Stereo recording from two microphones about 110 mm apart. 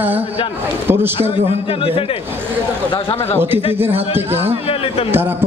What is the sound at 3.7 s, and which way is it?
Speech, 20° right (ahead or behind).